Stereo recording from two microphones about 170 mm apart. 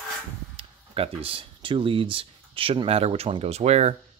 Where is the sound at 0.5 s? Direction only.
35° right (ahead or behind).